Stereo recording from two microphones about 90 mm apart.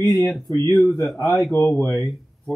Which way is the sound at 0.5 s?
25° left (ahead or behind).